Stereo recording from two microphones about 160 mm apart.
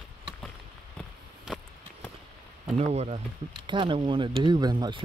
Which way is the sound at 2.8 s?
40° right (ahead or behind).